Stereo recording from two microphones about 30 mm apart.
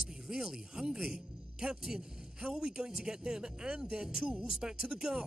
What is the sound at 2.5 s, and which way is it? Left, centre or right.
Speech, right.